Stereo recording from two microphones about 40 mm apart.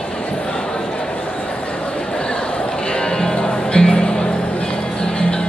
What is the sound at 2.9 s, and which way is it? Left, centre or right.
Music, centre.